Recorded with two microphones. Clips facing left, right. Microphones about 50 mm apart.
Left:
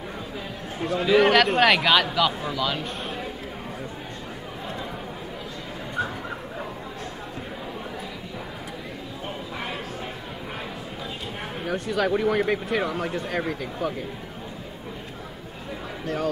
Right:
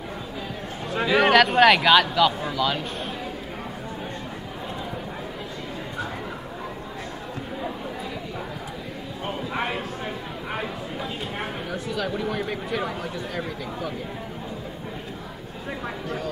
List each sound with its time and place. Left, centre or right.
1.0 s a man's voice: centre
1.3 s speech: centre
11.6 s speech: left